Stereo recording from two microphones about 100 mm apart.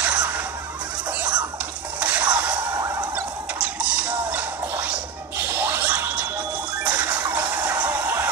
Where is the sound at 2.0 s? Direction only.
15° right (ahead or behind).